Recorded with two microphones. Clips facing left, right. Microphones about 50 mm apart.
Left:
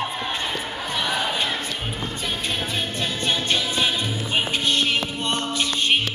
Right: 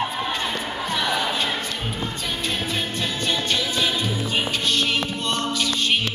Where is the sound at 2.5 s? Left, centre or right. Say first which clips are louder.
Right 2 dB; centre.